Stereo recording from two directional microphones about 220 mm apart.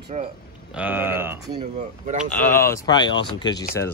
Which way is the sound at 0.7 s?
10° right (ahead or behind).